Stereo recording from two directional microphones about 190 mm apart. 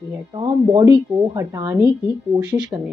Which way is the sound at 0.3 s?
15° right (ahead or behind).